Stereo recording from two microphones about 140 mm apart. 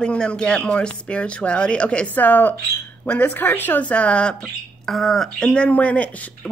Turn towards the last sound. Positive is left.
turn(degrees=10)  # may be behind; listen again after turning